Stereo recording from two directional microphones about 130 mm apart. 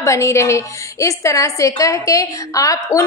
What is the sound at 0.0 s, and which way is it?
A woman's voice, 25° left (ahead or behind).